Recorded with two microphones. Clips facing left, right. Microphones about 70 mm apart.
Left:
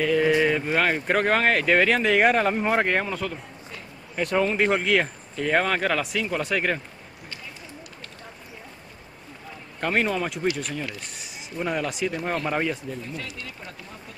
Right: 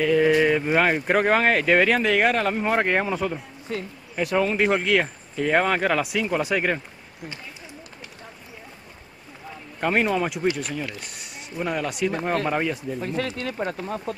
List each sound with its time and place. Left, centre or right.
0.0 s speech: centre
3.7 s speech: right
4.1 s speech: centre
9.8 s speech: centre
13.0 s speech: right
13.4 s speech: right